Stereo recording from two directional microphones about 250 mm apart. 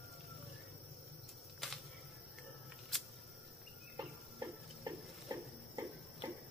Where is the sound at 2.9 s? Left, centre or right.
Centre.